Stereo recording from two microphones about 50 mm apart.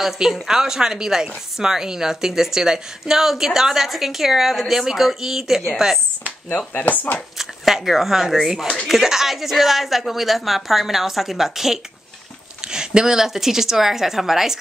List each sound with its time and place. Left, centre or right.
0.0 s a woman's voice: centre
6.7 s speech: left
7.3 s a woman's voice: centre